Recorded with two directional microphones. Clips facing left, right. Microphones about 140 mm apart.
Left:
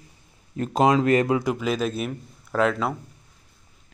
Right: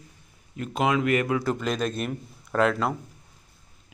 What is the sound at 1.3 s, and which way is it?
Speech, 15° left (ahead or behind).